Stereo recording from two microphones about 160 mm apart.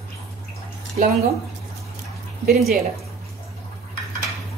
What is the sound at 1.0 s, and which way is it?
Speech, 55° right (ahead or behind).